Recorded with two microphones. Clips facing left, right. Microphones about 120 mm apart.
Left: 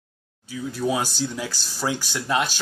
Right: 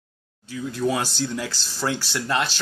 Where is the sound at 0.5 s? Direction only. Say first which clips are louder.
Right 1 dB; 5° left (ahead or behind).